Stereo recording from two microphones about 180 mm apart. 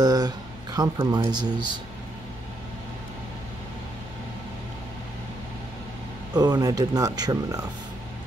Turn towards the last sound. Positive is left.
turn(degrees=-20)  # may be behind; listen again after turning